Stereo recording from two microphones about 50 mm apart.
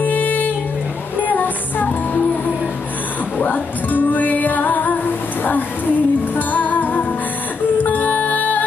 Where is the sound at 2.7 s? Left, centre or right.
Left.